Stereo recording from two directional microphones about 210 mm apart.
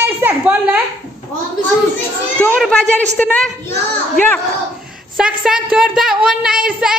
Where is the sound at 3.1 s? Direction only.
5° left (ahead or behind).